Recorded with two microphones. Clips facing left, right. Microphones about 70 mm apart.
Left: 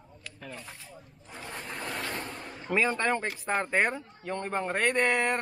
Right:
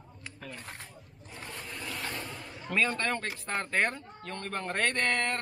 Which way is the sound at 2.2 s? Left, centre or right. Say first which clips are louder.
Left 2 dB; left.